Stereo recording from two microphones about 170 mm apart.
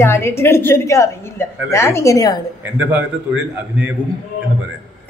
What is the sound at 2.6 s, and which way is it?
Speech, 10° right (ahead or behind).